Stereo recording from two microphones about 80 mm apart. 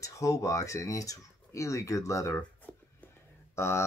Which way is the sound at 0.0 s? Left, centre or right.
Left.